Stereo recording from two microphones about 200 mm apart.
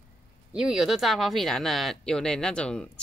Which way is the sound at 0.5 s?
Centre (ahead or behind).